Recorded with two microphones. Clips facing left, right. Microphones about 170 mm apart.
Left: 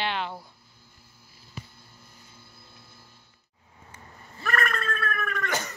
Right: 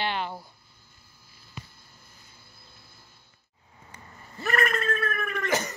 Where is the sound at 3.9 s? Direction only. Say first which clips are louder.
Right 4 dB; 20° right (ahead or behind).